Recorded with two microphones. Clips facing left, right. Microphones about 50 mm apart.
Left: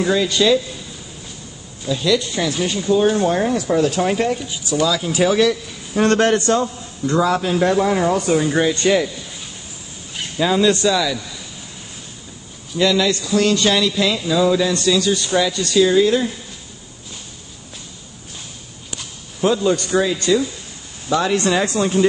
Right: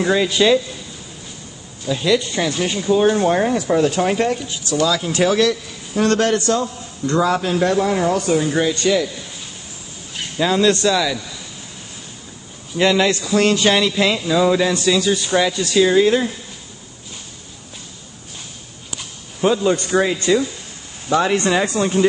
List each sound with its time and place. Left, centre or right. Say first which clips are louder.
0.0 s a man's voice: right 1 dB; centre
1.9 s a man's voice: even; right
2.1 s speech: right 1 dB; centre
4.5 s speech: even; centre
5.9 s a man's voice: left 1 dB; left
7.1 s speech: even; centre
7.6 s speech: left 1 dB; centre
8.7 s a man's voice: left 1 dB; left
10.4 s speech: even; centre
12.7 s a man's voice: right 1 dB; right
13.7 s a man's voice: right 1 dB; right
19.4 s a man's voice: even; centre